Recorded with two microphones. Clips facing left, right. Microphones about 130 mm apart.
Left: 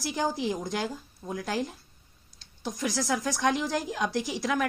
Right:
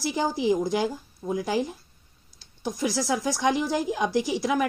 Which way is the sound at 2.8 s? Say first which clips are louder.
Right 3 dB; 10° right (ahead or behind).